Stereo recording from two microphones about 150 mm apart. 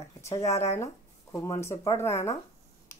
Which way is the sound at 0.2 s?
20° left (ahead or behind).